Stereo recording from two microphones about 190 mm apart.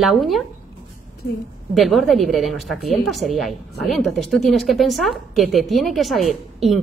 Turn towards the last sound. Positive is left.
turn(degrees=0)  # may be behind; listen again after turning